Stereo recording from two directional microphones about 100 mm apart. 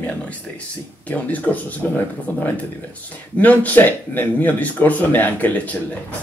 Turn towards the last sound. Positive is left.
turn(degrees=15)  # may be behind; listen again after turning